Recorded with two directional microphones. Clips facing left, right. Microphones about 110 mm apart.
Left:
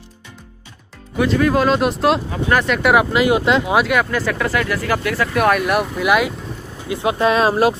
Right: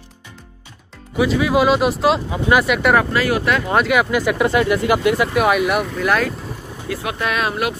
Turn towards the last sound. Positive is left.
turn(degrees=30)  # may be behind; listen again after turning